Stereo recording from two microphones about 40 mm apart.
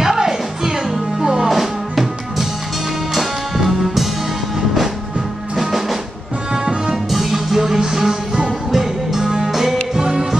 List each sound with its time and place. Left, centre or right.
0.0 s music: centre
1.5 s music: centre
5.6 s music: centre
7.1 s music: centre